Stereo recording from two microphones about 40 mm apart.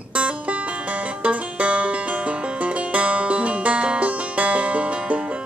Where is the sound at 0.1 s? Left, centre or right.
Right.